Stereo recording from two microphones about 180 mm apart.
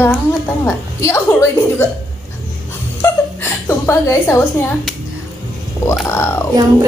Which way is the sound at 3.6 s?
15° left (ahead or behind).